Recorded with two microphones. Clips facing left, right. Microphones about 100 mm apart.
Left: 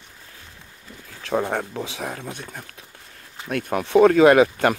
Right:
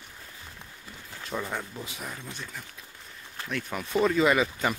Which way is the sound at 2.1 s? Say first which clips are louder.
Left 6 dB; 55° left (ahead or behind).